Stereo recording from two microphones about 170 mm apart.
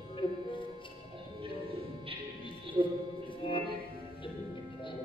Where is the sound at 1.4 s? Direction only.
30° right (ahead or behind).